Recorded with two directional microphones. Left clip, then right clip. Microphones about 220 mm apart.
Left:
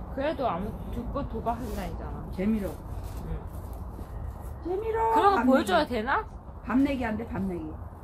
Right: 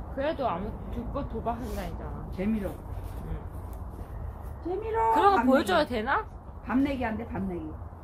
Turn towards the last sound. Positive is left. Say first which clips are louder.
# even
turn(degrees=-20)  # may be behind; listen again after turning